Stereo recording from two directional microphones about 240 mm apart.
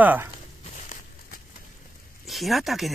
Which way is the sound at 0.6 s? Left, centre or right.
Left.